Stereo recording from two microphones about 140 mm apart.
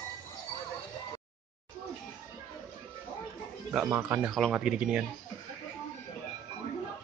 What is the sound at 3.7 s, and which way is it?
Speech, 10° right (ahead or behind).